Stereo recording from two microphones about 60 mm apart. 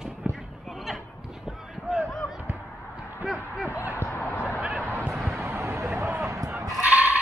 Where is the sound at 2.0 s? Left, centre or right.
Centre.